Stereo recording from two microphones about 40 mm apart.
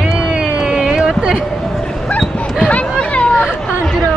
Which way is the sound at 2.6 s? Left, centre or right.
Left.